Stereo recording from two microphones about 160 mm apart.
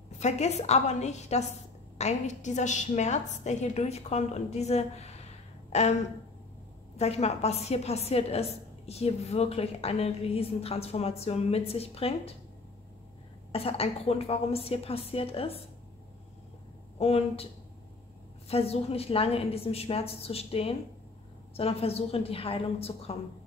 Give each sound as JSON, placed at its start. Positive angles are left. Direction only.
{"t": 0.2, "sound": "a woman's voice", "side_deg": 45}
{"t": 7.0, "sound": "a woman's voice", "side_deg": 40}
{"t": 13.5, "sound": "a woman's voice", "side_deg": 35}
{"t": 17.0, "sound": "a woman's voice", "side_deg": 40}
{"t": 18.5, "sound": "a woman's voice", "side_deg": 40}